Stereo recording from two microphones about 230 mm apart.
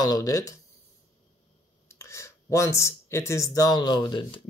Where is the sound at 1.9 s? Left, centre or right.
Centre.